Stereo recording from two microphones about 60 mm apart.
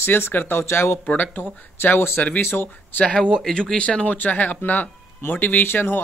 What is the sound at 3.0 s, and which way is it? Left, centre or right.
Speech, centre.